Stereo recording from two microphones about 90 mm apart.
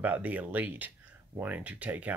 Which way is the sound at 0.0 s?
15° right (ahead or behind).